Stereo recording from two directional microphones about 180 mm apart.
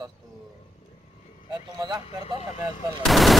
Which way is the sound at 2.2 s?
35° left (ahead or behind).